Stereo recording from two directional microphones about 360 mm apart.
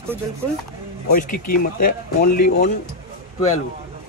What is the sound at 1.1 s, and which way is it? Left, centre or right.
Speech, left.